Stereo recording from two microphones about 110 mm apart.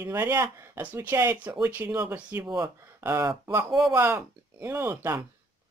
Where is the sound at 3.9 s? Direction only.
20° right (ahead or behind).